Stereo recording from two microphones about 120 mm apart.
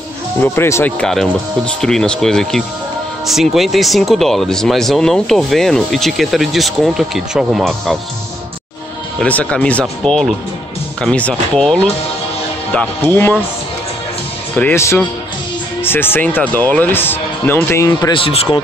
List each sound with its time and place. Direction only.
0.4 s speech: 20° left (ahead or behind)
0.9 s speech: 5° left (ahead or behind)
9.2 s speech: 10° left (ahead or behind)
12.7 s speech: 15° left (ahead or behind)
14.5 s speech: 10° left (ahead or behind)
14.8 s speech: 25° left (ahead or behind)
18.1 s speech: 55° left (ahead or behind)